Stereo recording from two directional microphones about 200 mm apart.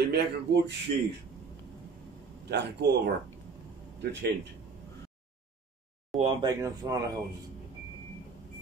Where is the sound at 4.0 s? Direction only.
60° right (ahead or behind).